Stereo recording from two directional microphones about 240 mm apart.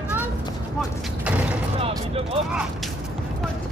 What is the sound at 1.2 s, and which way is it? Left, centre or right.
Mechanisms, centre.